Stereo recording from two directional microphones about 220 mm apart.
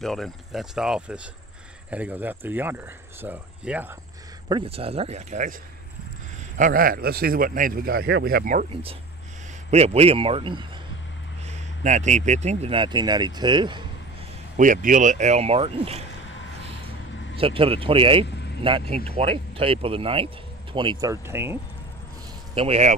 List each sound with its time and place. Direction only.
0.0 s speech: centre (ahead or behind)
4.5 s a man's voice: 25° right (ahead or behind)
6.6 s speech: 40° right (ahead or behind)
9.7 s a man's voice: 30° right (ahead or behind)
14.6 s speech: 35° right (ahead or behind)
17.4 s a man's voice: 25° right (ahead or behind)
22.5 s speech: 25° right (ahead or behind)